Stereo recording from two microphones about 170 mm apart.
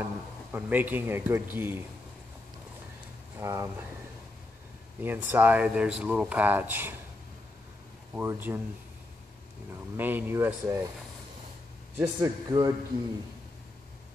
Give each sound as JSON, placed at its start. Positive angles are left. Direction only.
{"t": 0.0, "sound": "speech", "side_deg": -10}
{"t": 3.3, "sound": "speech", "side_deg": -15}
{"t": 5.0, "sound": "speech", "side_deg": -10}
{"t": 8.1, "sound": "speech", "side_deg": -10}
{"t": 9.9, "sound": "speech", "side_deg": -10}
{"t": 12.0, "sound": "a man's voice", "side_deg": -20}